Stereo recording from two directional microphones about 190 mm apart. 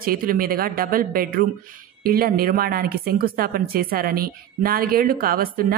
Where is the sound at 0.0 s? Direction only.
50° right (ahead or behind).